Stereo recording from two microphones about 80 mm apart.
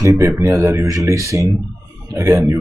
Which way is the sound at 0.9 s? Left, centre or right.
Right.